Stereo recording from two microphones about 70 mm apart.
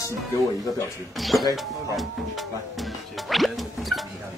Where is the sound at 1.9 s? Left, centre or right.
Centre.